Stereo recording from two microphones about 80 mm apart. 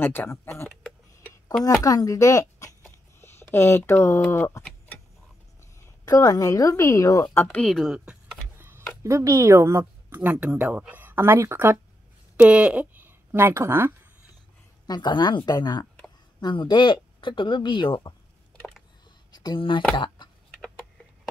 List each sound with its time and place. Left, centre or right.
0.0 s speech: left
1.8 s speech: left
3.2 s speech: left
5.6 s a woman's voice: left
7.6 s a woman's voice: centre
8.5 s speech: right
10.0 s speech: right
12.4 s speech: centre
13.0 s speech: right
14.9 s speech: left
16.3 s speech: left
19.3 s speech: left